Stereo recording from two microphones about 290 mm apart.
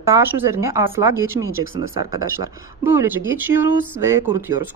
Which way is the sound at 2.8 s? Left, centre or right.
Centre.